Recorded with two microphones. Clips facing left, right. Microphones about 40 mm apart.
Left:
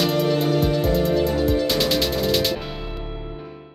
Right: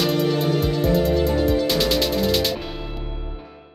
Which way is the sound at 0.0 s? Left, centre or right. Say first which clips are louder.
Even; centre.